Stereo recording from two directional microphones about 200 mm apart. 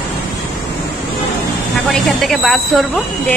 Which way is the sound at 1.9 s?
Centre (ahead or behind).